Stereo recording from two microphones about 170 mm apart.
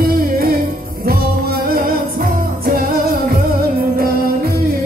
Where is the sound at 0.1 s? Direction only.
60° right (ahead or behind).